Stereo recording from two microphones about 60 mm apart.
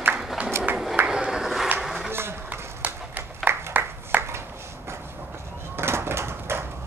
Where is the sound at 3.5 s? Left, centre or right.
Right.